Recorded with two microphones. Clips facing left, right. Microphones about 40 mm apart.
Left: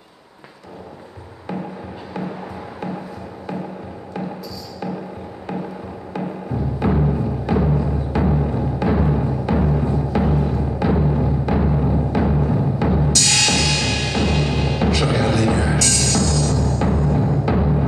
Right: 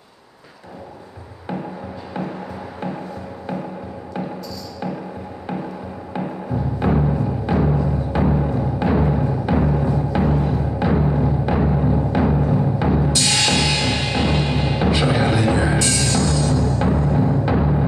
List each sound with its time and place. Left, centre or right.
6.8 s music: centre
13.1 s music: centre